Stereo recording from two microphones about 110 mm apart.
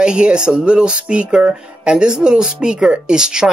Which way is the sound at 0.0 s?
10° right (ahead or behind).